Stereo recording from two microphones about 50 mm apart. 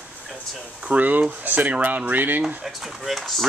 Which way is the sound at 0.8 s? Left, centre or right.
Right.